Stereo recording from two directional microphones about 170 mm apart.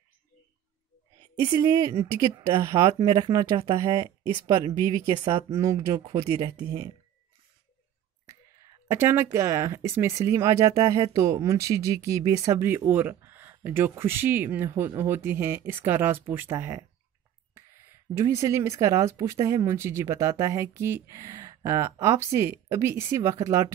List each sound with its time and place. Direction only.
1.4 s speech: 25° right (ahead or behind)
8.9 s speech: 15° right (ahead or behind)
17.6 s a sound: 15° right (ahead or behind)
18.1 s speech: 15° right (ahead or behind)